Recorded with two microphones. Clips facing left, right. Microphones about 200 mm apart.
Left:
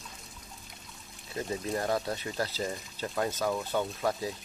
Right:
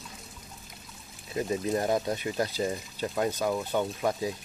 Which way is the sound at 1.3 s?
20° right (ahead or behind).